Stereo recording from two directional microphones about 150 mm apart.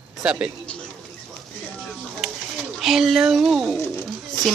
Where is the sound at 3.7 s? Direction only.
15° left (ahead or behind).